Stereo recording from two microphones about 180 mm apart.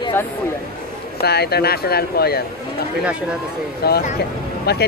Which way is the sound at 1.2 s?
65° left (ahead or behind).